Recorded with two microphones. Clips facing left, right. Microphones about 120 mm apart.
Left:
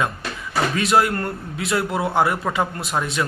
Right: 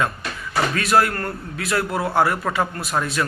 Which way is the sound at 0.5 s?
20° left (ahead or behind).